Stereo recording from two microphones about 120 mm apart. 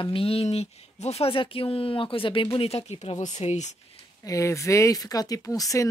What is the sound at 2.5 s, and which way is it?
Speech, 60° left (ahead or behind).